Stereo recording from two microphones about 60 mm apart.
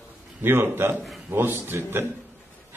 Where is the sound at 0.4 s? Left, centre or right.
Right.